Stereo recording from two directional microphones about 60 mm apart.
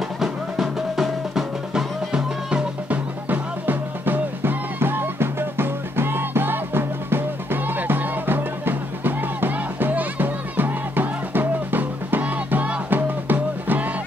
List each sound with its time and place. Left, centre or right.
0.2 s drum: centre
2.9 s music: right